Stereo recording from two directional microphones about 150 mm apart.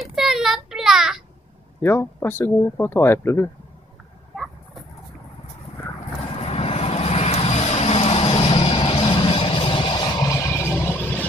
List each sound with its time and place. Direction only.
0.0 s child singing: centre (ahead or behind)
1.8 s speech: 15° left (ahead or behind)
6.4 s vehicle: 40° left (ahead or behind)
10.2 s a sound: 20° left (ahead or behind)